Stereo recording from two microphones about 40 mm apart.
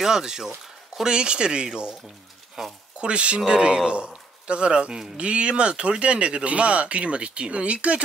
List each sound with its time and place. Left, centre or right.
0.0 s speech: centre
1.0 s speech: right
2.6 s speech: centre
3.0 s speech: right